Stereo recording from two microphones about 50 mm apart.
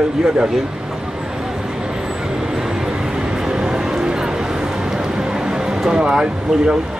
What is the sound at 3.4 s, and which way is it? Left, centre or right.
Music, centre.